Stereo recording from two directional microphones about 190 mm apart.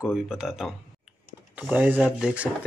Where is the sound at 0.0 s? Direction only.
5° right (ahead or behind).